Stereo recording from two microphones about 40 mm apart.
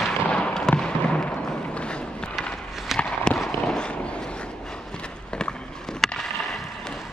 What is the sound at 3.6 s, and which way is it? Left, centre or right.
Boat, left.